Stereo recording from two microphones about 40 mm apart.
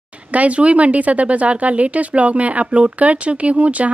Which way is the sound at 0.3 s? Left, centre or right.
Right.